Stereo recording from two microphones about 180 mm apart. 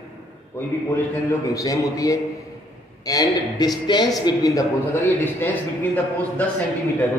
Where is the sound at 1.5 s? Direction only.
20° left (ahead or behind).